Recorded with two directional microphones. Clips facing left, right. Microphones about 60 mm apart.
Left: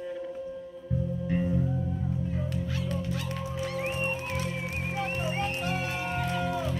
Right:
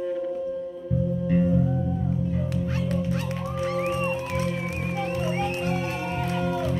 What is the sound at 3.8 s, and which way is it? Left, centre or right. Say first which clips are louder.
Music: right 4 dB; right.